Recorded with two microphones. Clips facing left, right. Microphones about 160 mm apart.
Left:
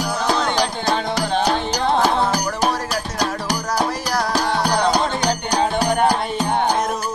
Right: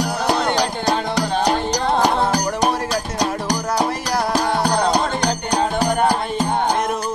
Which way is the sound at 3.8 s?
5° right (ahead or behind).